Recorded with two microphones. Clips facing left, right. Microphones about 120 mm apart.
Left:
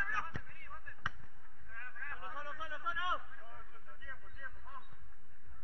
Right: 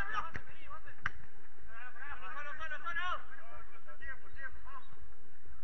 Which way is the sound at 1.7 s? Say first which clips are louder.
Left 1 dB; 20° right (ahead or behind).